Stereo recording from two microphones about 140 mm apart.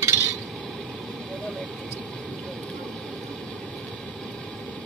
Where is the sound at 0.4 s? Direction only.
5° left (ahead or behind).